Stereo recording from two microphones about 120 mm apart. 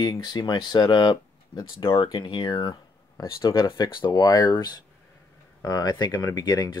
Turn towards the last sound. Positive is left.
turn(degrees=30)  # may be behind; listen again after turning